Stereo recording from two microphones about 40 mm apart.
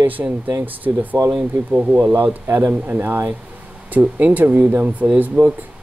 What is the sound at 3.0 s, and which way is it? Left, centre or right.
Speech, right.